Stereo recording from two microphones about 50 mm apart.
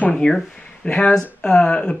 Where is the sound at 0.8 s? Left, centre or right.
Left.